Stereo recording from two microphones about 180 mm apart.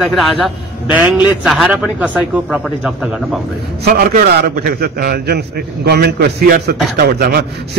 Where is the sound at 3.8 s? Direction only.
55° right (ahead or behind).